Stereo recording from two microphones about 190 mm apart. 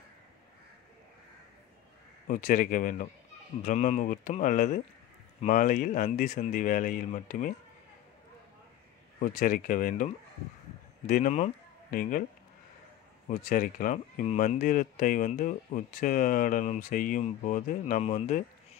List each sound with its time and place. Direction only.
2.2 s speech: 45° left (ahead or behind)
9.2 s speech: 45° left (ahead or behind)
13.3 s speech: 45° left (ahead or behind)